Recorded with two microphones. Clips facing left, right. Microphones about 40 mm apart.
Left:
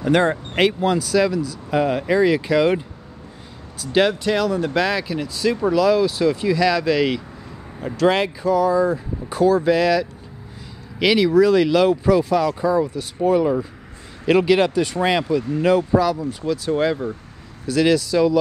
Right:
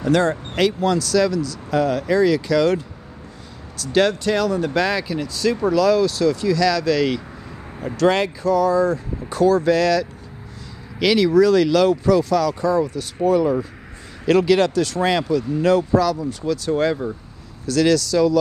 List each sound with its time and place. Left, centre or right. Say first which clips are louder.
0.0 s speech: even; left; by 17.1 s centre
17.6 s speech: even; left